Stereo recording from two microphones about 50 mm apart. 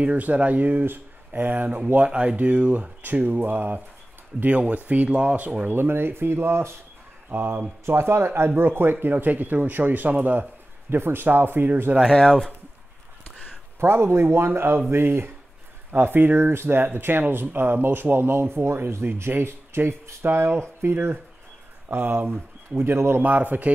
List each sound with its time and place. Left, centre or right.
0.0 s speech: right
2.0 s speech: right
3.0 s speech: right
5.7 s speech: right
7.2 s speech: right
7.8 s speech: right
9.0 s speech: right
11.0 s speech: right
12.2 s speech: centre
13.7 s speech: right
15.9 s speech: right
23.2 s speech: right